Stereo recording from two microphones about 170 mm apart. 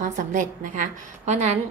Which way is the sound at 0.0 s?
50° right (ahead or behind).